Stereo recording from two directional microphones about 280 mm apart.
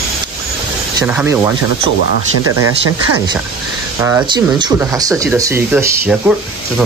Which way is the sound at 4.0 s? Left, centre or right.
Centre.